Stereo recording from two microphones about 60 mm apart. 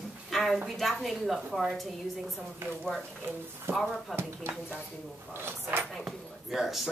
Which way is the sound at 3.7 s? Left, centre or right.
Centre.